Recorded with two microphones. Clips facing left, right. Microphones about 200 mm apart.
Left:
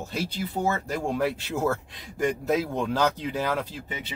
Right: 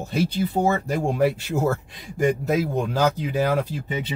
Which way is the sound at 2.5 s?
10° right (ahead or behind).